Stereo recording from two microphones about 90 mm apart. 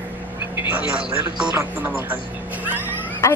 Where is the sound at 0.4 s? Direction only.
20° right (ahead or behind).